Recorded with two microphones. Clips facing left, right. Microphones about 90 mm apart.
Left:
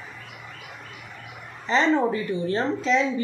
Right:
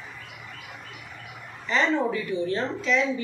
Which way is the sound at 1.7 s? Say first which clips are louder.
Left 3 dB; 30° left (ahead or behind).